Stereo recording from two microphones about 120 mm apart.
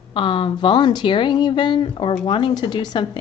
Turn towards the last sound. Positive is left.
turn(degrees=40)  # may be behind; listen again after turning